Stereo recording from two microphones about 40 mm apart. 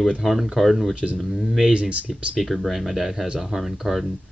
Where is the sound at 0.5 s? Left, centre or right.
Centre.